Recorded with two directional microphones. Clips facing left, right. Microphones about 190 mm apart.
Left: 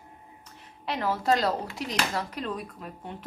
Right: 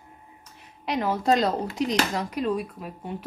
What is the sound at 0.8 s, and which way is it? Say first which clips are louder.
A woman's voice: right 3 dB; 15° right (ahead or behind).